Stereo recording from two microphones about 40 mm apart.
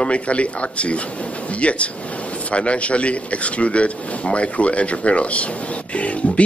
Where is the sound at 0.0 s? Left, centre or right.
Left.